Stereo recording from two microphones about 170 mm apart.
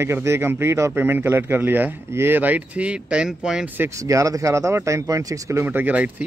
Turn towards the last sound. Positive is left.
turn(degrees=-10)  # may be behind; listen again after turning